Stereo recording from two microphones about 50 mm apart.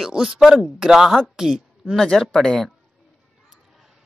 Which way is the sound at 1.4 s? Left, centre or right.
Centre.